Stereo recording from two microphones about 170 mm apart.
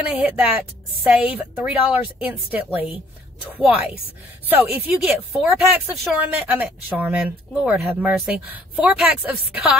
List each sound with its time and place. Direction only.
0.1 s speech: 10° right (ahead or behind)